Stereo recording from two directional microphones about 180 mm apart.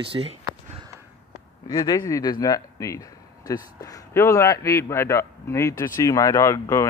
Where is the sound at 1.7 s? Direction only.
20° left (ahead or behind).